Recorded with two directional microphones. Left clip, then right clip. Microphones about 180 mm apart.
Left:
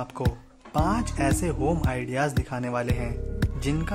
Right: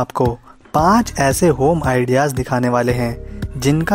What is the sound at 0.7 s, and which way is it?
Speech, 50° right (ahead or behind).